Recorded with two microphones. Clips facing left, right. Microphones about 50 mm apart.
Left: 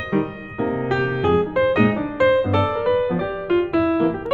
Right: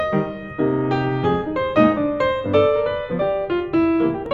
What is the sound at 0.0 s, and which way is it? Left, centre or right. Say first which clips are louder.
Music: right 2 dB; centre.